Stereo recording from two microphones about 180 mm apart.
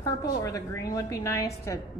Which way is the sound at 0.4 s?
20° left (ahead or behind).